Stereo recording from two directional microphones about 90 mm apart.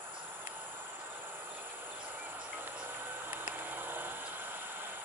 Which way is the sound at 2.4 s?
15° right (ahead or behind).